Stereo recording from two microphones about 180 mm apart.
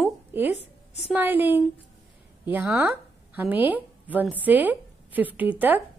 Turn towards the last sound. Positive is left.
turn(degrees=-10)  # may be behind; listen again after turning